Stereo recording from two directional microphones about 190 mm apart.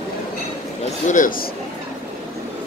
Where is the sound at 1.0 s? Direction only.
45° left (ahead or behind).